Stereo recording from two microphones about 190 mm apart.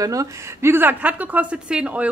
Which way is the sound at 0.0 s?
20° right (ahead or behind).